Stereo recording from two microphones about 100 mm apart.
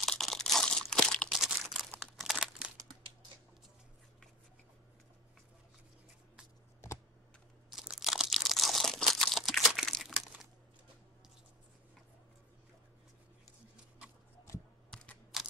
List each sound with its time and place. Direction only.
0.0 s crumpling: 5° left (ahead or behind)
7.7 s crunch: 5° right (ahead or behind)
14.9 s computer keyboard: 5° left (ahead or behind)